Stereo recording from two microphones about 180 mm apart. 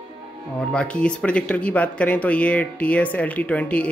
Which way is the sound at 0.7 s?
5° left (ahead or behind).